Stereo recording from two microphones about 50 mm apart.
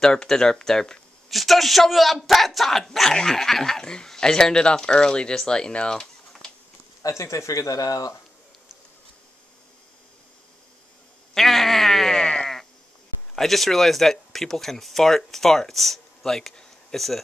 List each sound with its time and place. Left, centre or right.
0.0 s speech: centre
5.9 s a sound: centre
7.1 s speech: left
11.3 s sheep: centre
13.4 s speech: centre